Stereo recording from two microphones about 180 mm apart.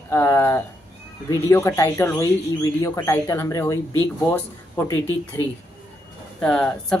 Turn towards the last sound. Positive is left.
turn(degrees=5)  # may be behind; listen again after turning